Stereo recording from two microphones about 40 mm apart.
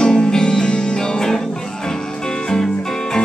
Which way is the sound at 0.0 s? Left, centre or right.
Centre.